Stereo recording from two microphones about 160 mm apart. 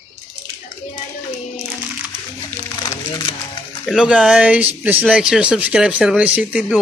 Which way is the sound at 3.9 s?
5° right (ahead or behind).